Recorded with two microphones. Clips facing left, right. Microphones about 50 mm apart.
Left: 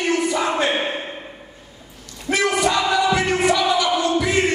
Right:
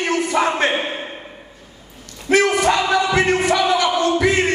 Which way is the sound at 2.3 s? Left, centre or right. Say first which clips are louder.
Right 4 dB; right.